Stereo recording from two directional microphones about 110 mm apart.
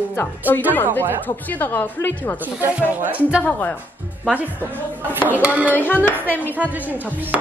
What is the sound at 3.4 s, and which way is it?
Music, 15° left (ahead or behind).